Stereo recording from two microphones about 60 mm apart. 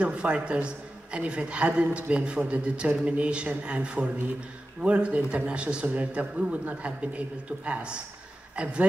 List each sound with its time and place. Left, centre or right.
0.0 s a man's voice: centre